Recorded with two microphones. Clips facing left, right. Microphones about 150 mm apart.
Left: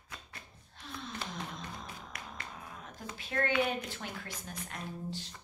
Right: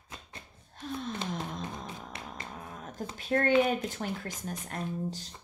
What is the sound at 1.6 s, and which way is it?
Music, 25° right (ahead or behind).